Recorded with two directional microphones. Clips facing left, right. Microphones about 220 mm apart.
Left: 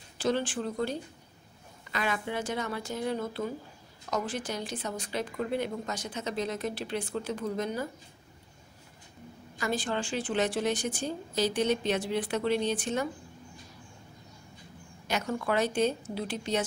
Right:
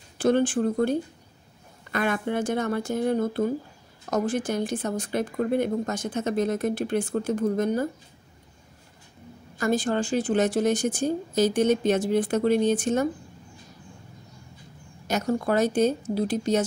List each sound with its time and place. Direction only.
0.2 s speech: 50° right (ahead or behind)
9.6 s speech: 45° right (ahead or behind)
15.0 s speech: 40° right (ahead or behind)